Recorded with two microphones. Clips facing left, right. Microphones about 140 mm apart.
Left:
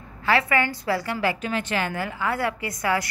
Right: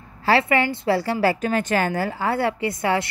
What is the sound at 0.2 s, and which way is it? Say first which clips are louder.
A woman's voice: right 3 dB; 30° right (ahead or behind).